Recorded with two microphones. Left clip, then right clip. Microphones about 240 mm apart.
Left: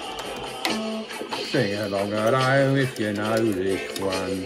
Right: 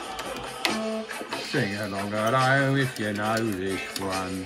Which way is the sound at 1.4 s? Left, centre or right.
Centre.